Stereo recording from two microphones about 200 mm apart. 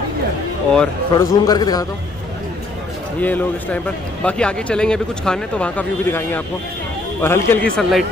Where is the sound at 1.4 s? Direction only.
20° left (ahead or behind).